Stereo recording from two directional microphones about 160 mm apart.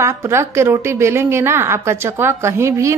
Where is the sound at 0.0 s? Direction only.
15° right (ahead or behind).